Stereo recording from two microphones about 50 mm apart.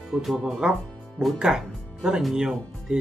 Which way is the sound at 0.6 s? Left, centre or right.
Centre.